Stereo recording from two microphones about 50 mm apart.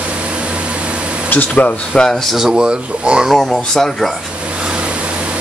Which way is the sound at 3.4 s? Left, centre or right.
Centre.